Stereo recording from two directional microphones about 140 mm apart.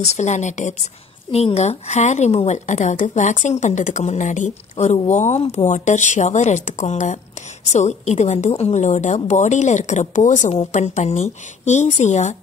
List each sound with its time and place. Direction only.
0.0 s a woman's voice: 55° left (ahead or behind)
1.3 s a woman's voice: 50° left (ahead or behind)